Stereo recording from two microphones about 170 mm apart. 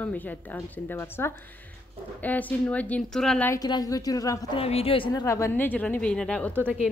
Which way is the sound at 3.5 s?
20° left (ahead or behind).